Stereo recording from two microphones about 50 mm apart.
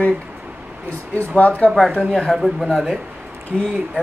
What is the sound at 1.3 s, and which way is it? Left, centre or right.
Speech, left.